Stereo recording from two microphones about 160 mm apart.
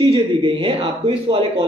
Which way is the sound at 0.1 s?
30° right (ahead or behind).